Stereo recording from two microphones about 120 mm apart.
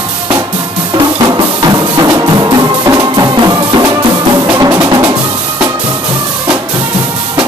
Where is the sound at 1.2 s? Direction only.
35° right (ahead or behind).